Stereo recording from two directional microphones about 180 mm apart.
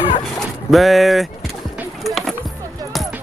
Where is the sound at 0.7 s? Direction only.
Centre (ahead or behind).